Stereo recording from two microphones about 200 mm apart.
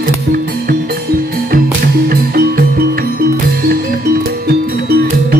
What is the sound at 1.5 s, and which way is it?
Music, 50° right (ahead or behind).